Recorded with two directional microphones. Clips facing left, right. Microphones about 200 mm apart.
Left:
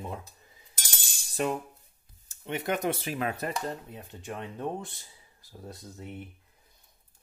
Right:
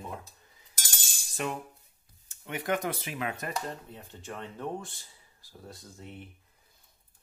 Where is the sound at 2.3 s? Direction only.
25° left (ahead or behind).